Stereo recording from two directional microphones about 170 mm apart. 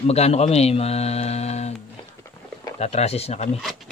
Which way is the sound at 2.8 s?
40° left (ahead or behind).